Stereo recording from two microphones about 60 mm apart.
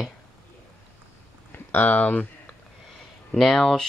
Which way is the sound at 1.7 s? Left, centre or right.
Left.